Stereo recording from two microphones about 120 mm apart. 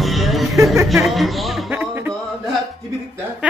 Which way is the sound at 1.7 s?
15° right (ahead or behind).